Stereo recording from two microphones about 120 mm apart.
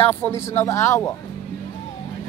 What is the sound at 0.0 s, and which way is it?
Speech, 15° left (ahead or behind).